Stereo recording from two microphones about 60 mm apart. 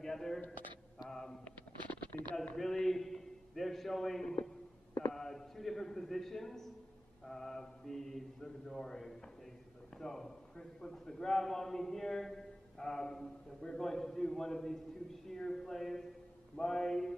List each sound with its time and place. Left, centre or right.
0.0 s a man's voice: centre
1.0 s mantra: centre
1.4 s a sound: left
2.5 s a man's voice: centre
5.1 s a sound: centre
7.2 s a man's voice: centre
16.5 s mantra: centre